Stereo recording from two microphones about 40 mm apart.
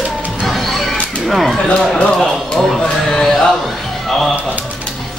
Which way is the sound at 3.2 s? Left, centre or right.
Centre.